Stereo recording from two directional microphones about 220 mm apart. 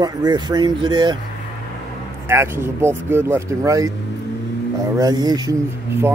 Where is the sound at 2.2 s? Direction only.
10° right (ahead or behind).